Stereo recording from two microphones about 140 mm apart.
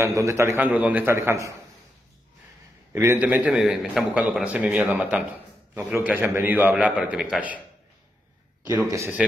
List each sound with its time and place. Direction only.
0.0 s a man's voice: 20° right (ahead or behind)
2.9 s a man's voice: 15° right (ahead or behind)
8.8 s a man's voice: 20° right (ahead or behind)